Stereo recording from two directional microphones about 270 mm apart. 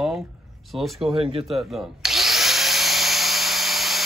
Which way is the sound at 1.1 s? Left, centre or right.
Centre.